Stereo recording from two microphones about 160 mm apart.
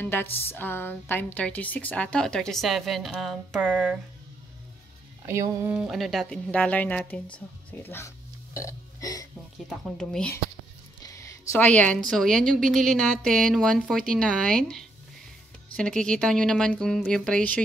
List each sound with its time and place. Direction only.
0.0 s a woman's voice: 15° left (ahead or behind); by 4.0 s 10° right (ahead or behind)
5.2 s a woman's voice: 15° right (ahead or behind); by 8.1 s 15° left (ahead or behind)
8.5 s burping: 20° left (ahead or behind)
9.7 s speech: 5° left (ahead or behind)
11.0 s a sound: 20° left (ahead or behind)
11.5 s a woman's voice: 10° left (ahead or behind)